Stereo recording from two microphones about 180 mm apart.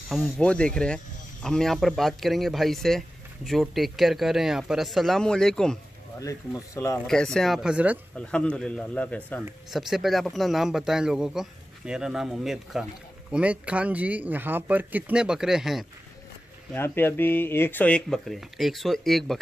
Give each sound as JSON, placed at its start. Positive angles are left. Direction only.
{"t": 0.1, "sound": "speech", "side_deg": 5}
{"t": 6.1, "sound": "speech", "side_deg": 20}
{"t": 7.1, "sound": "speech", "side_deg": 5}
{"t": 8.3, "sound": "speech", "side_deg": 5}
{"t": 16.7, "sound": "speech", "side_deg": 10}